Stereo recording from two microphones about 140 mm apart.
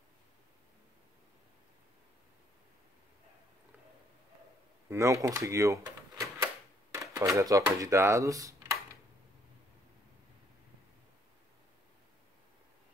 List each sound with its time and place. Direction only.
4.8 s speech: 20° right (ahead or behind)